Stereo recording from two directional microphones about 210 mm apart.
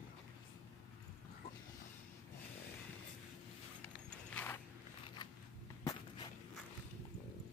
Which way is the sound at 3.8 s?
5° left (ahead or behind).